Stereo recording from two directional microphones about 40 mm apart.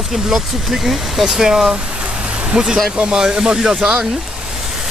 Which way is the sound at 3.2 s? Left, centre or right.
Centre.